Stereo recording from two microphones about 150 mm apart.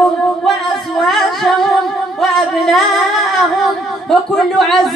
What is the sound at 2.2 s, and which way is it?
Singing, centre (ahead or behind).